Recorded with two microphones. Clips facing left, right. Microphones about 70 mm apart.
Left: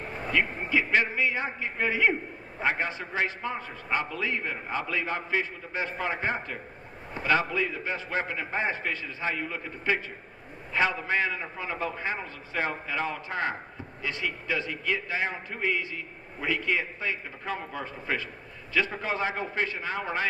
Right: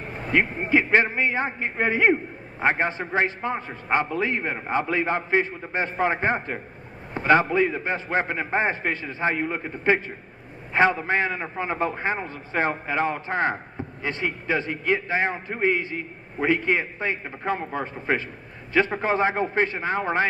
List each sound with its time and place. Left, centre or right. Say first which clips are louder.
0.3 s a man's voice: right 6 dB; right